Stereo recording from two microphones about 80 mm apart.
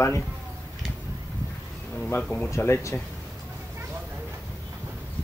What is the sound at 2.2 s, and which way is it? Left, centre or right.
Speech, centre.